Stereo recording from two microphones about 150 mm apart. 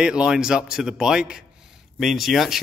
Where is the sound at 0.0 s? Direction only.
5° right (ahead or behind).